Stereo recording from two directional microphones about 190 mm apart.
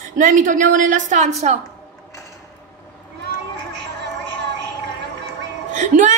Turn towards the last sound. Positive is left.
turn(degrees=-40)  # may be behind; listen again after turning